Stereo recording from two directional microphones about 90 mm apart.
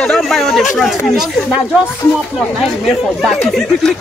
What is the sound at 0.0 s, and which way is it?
Speech, centre (ahead or behind).